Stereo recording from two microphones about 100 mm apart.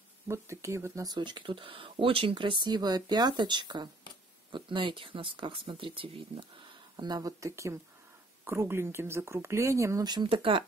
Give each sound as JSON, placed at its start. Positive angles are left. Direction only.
{"t": 0.3, "sound": "speech", "side_deg": -30}
{"t": 1.0, "sound": "speech", "side_deg": -50}
{"t": 10.2, "sound": "speech", "side_deg": -60}